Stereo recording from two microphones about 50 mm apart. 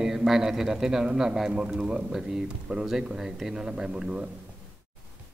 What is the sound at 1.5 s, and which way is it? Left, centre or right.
Speech, right.